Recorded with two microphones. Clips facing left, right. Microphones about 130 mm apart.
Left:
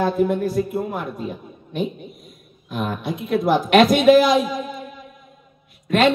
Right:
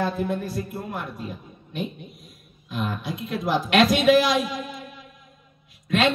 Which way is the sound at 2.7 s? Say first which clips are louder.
Left 4 dB; 50° left (ahead or behind).